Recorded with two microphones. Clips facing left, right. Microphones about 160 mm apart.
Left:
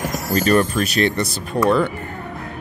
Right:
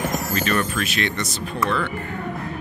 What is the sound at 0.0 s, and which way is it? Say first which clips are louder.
Speech: left 3 dB; 40° left (ahead or behind).